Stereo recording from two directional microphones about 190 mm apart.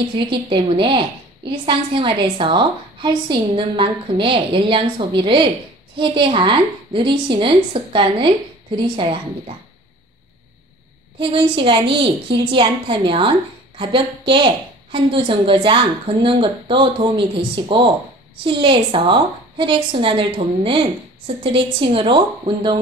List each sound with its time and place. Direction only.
0.3 s a woman's voice: 25° right (ahead or behind)
11.1 s a woman's voice: 25° right (ahead or behind)